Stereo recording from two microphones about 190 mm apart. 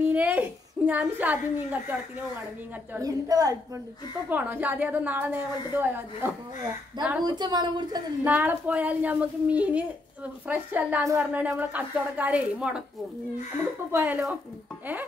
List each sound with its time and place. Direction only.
0.1 s a woman's voice: 10° right (ahead or behind)
2.9 s a woman's voice: 20° right (ahead or behind)
7.2 s a woman's voice: 20° right (ahead or behind)
8.2 s speech: 10° right (ahead or behind)
13.9 s speech: 10° right (ahead or behind)